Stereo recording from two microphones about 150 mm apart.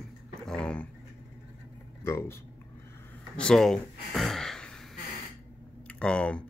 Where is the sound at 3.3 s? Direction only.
5° left (ahead or behind).